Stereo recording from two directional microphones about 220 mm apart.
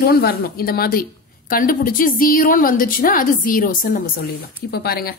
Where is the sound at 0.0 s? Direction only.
45° left (ahead or behind).